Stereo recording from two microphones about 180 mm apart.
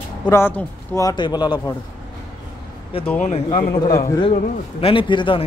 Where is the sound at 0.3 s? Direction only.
10° left (ahead or behind).